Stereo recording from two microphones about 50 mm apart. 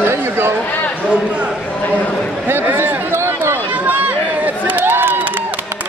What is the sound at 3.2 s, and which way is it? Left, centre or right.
Run, right.